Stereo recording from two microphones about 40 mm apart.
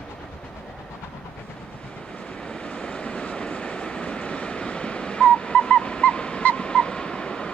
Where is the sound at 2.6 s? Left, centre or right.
Left.